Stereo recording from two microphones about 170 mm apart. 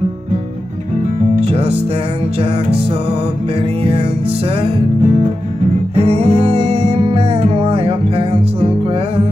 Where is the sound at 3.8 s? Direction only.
35° right (ahead or behind).